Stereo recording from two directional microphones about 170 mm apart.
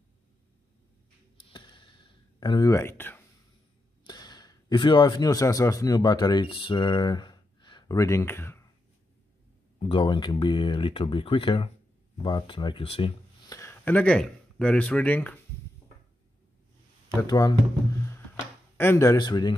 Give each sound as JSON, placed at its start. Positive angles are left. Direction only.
{"t": 1.4, "sound": "a sound", "side_deg": 30}
{"t": 2.4, "sound": "speech", "side_deg": 25}
{"t": 4.0, "sound": "speech", "side_deg": 25}
{"t": 9.8, "sound": "speech", "side_deg": 30}
{"t": 13.5, "sound": "speech", "side_deg": 15}
{"t": 17.2, "sound": "speech", "side_deg": 20}
{"t": 18.8, "sound": "speech", "side_deg": 15}